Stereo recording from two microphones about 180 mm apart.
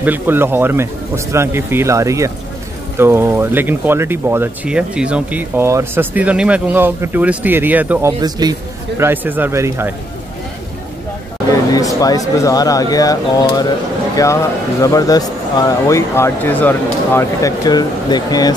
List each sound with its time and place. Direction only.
0.0 s speech: 10° right (ahead or behind)
8.2 s speech: 20° right (ahead or behind)
11.7 s speech: 20° left (ahead or behind)